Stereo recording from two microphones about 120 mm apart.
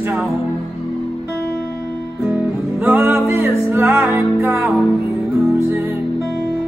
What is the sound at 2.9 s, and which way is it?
Music, 15° right (ahead or behind).